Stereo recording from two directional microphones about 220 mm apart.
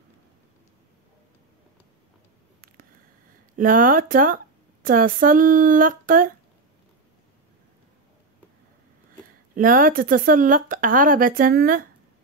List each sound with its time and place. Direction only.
3.5 s a woman's voice: 40° right (ahead or behind)
9.6 s a woman's voice: 40° right (ahead or behind)